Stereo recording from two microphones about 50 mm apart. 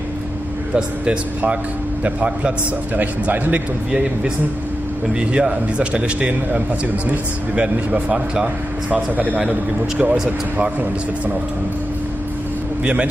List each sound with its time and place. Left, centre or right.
2.0 s speech: right
5.1 s speech: centre
8.9 s speech: right
12.8 s speech: right